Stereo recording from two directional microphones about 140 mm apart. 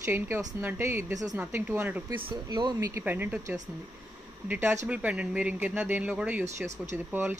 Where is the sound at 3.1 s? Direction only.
15° right (ahead or behind).